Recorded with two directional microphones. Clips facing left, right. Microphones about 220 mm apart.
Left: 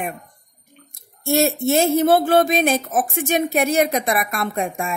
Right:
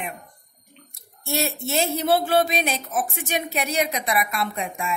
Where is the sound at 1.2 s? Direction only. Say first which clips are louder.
Left 9 dB; 45° left (ahead or behind).